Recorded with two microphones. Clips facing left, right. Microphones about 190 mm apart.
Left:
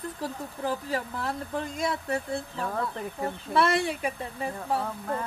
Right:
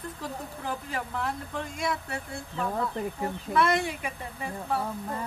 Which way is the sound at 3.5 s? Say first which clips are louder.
Left 1 dB; 35° left (ahead or behind).